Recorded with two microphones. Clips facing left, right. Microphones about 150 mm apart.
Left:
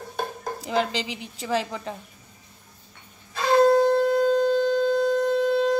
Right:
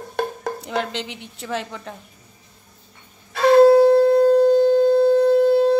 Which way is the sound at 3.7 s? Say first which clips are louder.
Right 6 dB; 30° right (ahead or behind).